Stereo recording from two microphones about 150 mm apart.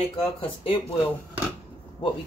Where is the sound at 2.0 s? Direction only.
35° left (ahead or behind).